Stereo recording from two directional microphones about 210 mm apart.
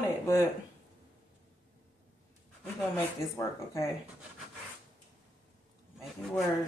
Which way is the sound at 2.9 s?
15° left (ahead or behind).